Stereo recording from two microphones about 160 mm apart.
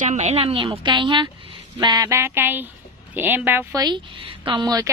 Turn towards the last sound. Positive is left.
turn(degrees=-25)  # may be behind; listen again after turning